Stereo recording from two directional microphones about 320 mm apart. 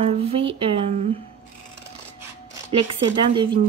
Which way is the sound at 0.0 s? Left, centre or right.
Centre.